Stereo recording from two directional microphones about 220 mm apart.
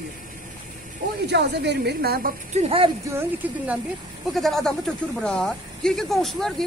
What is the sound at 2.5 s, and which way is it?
Speech, 25° right (ahead or behind).